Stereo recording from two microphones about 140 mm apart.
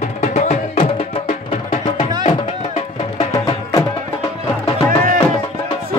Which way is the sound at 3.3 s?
25° left (ahead or behind).